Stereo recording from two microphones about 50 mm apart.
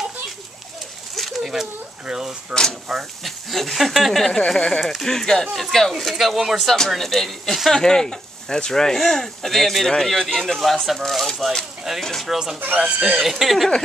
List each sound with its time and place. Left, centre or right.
1.1 s a sound: centre
2.9 s speech: centre
4.5 s speech: centre
7.0 s speech: centre
12.3 s speech: centre
12.5 s speech: right
13.2 s speech: centre